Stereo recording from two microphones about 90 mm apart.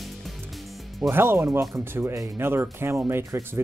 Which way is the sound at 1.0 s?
25° right (ahead or behind).